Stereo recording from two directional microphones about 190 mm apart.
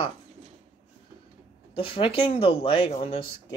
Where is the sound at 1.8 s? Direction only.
30° left (ahead or behind).